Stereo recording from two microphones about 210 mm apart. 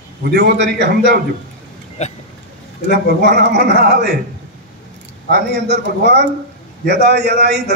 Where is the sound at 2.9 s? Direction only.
55° right (ahead or behind).